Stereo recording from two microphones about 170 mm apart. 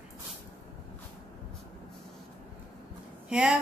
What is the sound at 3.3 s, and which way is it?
Speech, 5° right (ahead or behind).